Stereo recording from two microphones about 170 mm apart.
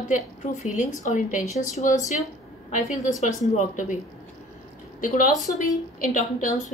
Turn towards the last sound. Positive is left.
turn(degrees=50)  # may be behind; listen again after turning